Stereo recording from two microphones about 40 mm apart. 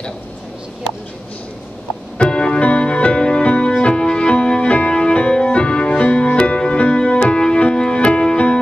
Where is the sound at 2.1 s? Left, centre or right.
Left.